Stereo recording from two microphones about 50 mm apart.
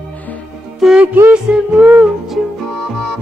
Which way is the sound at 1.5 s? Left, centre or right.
Right.